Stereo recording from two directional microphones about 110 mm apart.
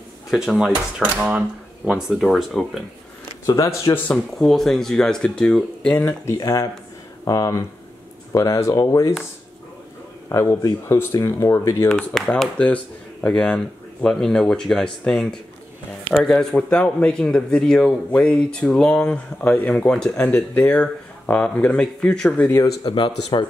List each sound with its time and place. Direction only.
0.3 s speech: centre (ahead or behind)
3.4 s speech: 30° left (ahead or behind)
4.1 s speech: 5° left (ahead or behind)
6.3 s speech: 30° left (ahead or behind)
10.3 s speech: 20° left (ahead or behind)
10.6 s speech: 35° left (ahead or behind)
11.9 s speech: centre (ahead or behind)
22.8 s speech: 50° left (ahead or behind)